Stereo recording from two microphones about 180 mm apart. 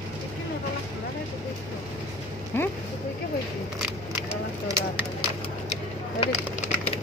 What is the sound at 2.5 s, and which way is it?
Speech, 10° left (ahead or behind).